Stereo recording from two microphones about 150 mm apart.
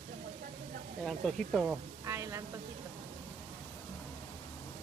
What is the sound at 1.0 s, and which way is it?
Speech, centre (ahead or behind).